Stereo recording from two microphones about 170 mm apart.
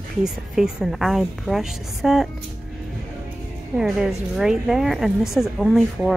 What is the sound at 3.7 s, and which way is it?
A woman's voice, centre (ahead or behind).